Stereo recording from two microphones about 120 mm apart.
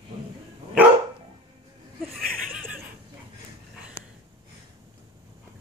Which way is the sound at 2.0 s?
Centre (ahead or behind).